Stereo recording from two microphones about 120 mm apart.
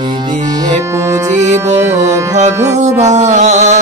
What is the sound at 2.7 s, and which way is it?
Music, 75° right (ahead or behind).